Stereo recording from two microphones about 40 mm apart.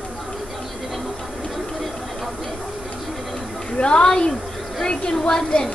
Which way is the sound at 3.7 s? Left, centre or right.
Left.